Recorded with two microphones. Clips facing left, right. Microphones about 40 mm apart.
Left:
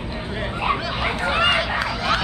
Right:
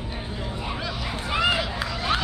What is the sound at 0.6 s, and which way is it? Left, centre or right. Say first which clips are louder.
Dog: left 10 dB; left.